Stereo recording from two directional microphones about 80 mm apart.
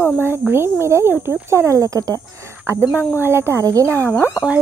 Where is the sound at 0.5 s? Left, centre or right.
Right.